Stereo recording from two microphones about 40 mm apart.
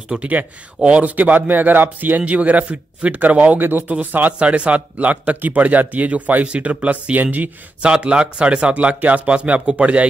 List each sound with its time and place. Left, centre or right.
0.2 s speech: right
3.5 s speech: right
4.0 s speech: right
4.3 s speech: right
7.2 s speech: right
7.8 s speech: right